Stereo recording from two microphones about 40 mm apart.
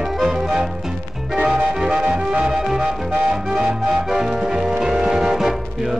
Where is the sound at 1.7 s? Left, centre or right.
Centre.